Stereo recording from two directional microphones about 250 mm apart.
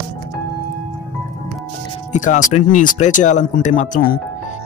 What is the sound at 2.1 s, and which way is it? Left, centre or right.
Speech, left.